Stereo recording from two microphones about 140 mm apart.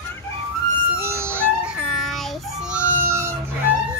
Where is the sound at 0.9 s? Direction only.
20° right (ahead or behind).